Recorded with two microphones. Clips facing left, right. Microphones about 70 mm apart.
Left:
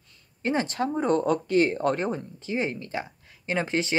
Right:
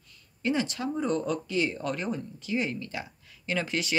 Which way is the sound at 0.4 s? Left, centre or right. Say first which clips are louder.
Left 3 dB; left.